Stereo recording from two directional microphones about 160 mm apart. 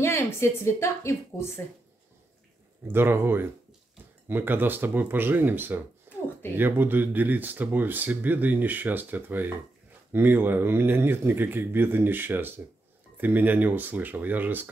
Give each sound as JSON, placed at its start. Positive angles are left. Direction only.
{"t": 0.0, "sound": "a sound", "side_deg": 15}
{"t": 0.7, "sound": "a woman's voice", "side_deg": 15}
{"t": 2.9, "sound": "speech", "side_deg": -15}